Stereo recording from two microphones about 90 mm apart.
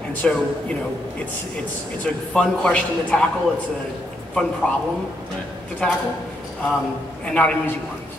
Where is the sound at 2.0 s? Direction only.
10° left (ahead or behind).